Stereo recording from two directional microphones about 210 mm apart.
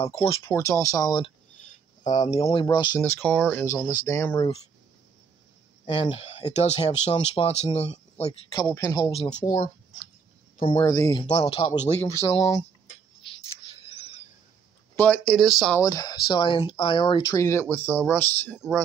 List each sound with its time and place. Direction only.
0.0 s speech: 25° left (ahead or behind)
0.4 s speech: 15° left (ahead or behind)
2.0 s speech: 35° left (ahead or behind)
3.0 s speech: 10° left (ahead or behind)
3.7 s speech: 15° left (ahead or behind)
5.9 s speech: 25° left (ahead or behind)
8.7 s speech: 15° left (ahead or behind)
9.1 s speech: 30° left (ahead or behind)
10.6 s speech: 25° left (ahead or behind)
12.0 s speech: 15° left (ahead or behind)
15.0 s speech: 5° left (ahead or behind)
15.8 s speech: 15° left (ahead or behind)